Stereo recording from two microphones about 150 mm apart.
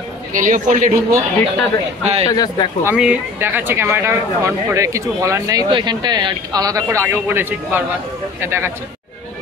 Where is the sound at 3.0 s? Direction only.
10° right (ahead or behind).